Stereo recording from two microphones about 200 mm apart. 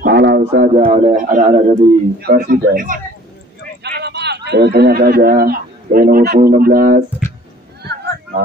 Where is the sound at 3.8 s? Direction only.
55° right (ahead or behind).